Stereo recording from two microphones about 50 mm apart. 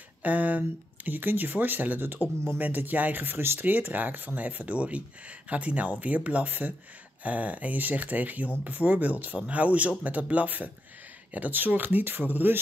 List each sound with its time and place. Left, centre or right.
0.2 s speech: right